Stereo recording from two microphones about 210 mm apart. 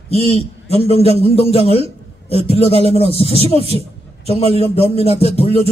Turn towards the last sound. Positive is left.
turn(degrees=30)  # may be behind; listen again after turning